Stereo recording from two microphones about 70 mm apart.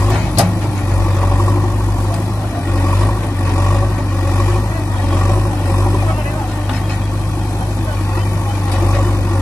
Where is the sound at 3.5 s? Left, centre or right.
Left.